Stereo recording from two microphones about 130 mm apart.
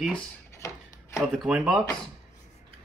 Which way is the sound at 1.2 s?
5° right (ahead or behind).